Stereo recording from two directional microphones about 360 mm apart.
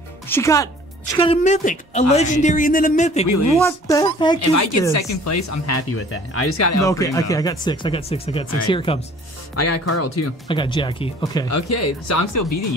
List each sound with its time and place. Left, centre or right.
0.3 s a woman's voice: centre
3.5 s speech: centre
4.4 s speech: left
6.8 s speech: centre
9.6 s speech: left
10.5 s speech: centre
11.4 s speech: left